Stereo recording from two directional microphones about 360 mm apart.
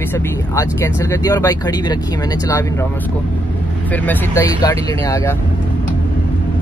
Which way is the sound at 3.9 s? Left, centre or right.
Centre.